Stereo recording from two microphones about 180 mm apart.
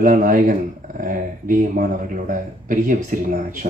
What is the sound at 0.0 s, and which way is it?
Speech, 50° right (ahead or behind).